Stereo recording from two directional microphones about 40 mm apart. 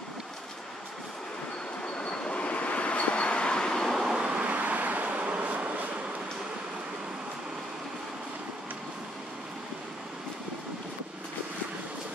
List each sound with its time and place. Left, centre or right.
2.0 s train: left
4.0 s vehicle: centre
4.3 s vehicle: right